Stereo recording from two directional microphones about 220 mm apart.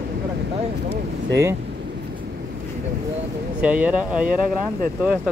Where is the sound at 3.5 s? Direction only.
5° right (ahead or behind).